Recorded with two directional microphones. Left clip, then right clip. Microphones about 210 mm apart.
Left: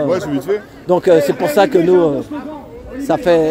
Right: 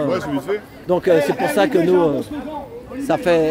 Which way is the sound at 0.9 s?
10° left (ahead or behind).